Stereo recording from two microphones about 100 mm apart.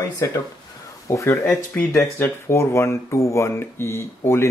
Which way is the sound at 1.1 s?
30° left (ahead or behind).